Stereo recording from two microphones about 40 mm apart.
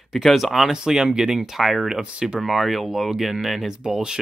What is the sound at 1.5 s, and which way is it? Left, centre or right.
Speech, centre.